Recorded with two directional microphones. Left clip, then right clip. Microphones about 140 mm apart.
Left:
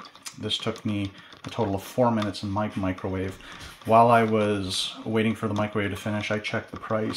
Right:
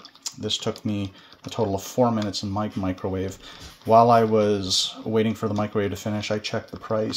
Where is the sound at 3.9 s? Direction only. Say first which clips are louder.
Right 2 dB; 50° right (ahead or behind).